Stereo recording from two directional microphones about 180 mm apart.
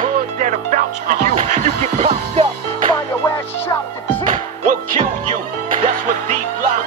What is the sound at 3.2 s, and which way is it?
Music, 15° left (ahead or behind).